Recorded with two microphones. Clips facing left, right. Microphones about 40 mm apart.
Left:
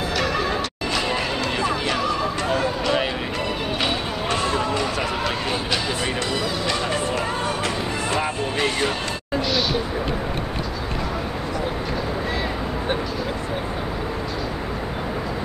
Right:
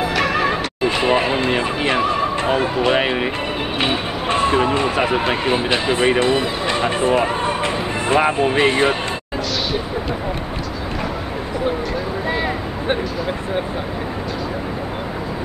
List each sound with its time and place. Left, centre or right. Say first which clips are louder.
0.1 s neigh: right 4 dB; right
3.8 s speech: right 5 dB; right
12.3 s vehicle: right 4 dB; right